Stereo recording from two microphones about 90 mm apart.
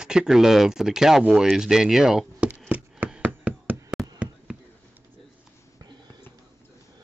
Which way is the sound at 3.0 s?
15° right (ahead or behind).